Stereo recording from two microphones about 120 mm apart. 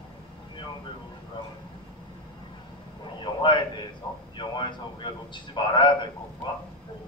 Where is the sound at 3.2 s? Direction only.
40° left (ahead or behind).